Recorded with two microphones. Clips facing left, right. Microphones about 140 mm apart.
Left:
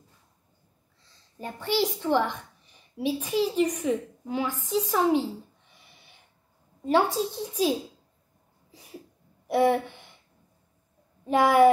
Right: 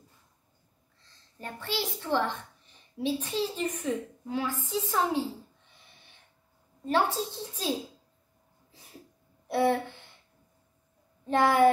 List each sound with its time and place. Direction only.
1.0 s a child's voice: 15° left (ahead or behind)
6.8 s a woman's voice: 15° left (ahead or behind)
9.5 s a woman's voice: 20° left (ahead or behind)
11.2 s a woman's voice: 10° left (ahead or behind)